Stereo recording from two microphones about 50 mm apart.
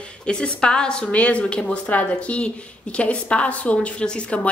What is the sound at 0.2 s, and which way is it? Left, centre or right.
Speech, left.